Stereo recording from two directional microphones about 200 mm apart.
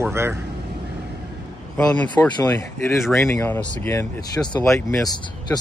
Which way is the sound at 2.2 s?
15° left (ahead or behind).